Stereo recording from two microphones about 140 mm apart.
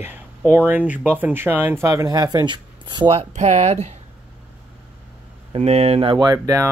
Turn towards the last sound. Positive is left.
turn(degrees=-25)  # may be behind; listen again after turning